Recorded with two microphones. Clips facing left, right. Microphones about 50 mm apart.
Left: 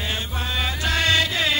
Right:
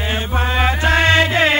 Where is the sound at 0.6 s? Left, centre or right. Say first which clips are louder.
Right 7 dB; right.